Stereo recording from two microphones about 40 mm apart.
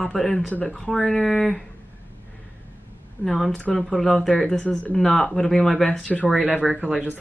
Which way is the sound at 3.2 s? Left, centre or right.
Centre.